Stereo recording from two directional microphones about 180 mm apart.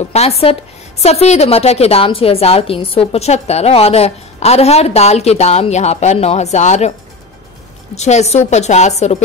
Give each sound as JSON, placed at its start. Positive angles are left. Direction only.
{"t": 0.0, "sound": "a woman's voice", "side_deg": 35}
{"t": 7.9, "sound": "a woman's voice", "side_deg": 40}